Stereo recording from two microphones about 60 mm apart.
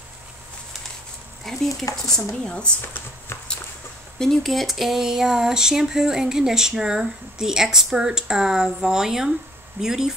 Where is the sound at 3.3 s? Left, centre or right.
Left.